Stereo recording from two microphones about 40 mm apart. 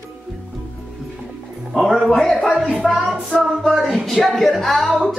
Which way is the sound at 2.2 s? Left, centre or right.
Centre.